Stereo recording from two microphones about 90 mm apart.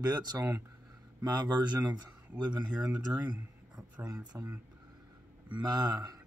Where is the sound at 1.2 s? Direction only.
50° right (ahead or behind).